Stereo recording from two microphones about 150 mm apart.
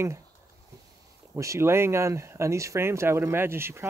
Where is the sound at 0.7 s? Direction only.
20° right (ahead or behind).